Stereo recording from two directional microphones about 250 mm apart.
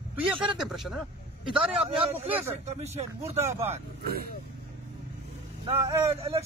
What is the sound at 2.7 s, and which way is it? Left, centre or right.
Speech, right.